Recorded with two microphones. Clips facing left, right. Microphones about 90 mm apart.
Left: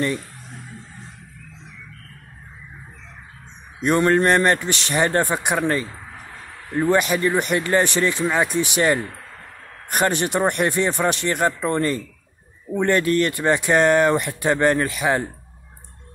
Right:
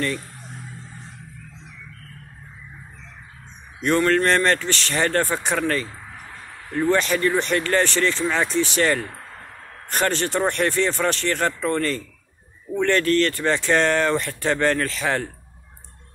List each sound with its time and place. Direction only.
3.8 s speech: 20° left (ahead or behind)